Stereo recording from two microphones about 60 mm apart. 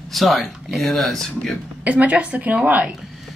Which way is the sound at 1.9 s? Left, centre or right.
Right.